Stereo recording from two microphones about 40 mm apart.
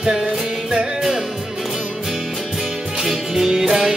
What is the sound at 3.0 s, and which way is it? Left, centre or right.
Music, centre.